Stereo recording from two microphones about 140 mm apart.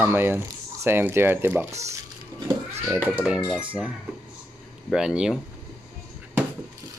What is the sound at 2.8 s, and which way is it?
Speech, 10° right (ahead or behind).